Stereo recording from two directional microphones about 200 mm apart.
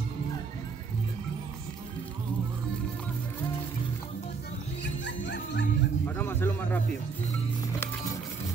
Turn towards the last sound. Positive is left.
turn(degrees=10)  # may be behind; listen again after turning